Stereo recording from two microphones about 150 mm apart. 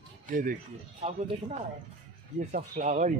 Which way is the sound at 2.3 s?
55° right (ahead or behind).